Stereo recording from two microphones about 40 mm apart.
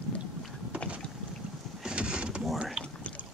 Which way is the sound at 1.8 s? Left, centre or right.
Right.